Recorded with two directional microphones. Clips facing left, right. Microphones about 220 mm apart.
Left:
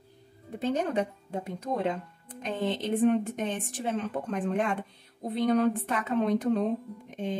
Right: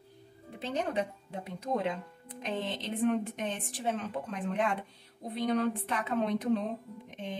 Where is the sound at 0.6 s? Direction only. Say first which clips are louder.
Left 5 dB; 45° left (ahead or behind).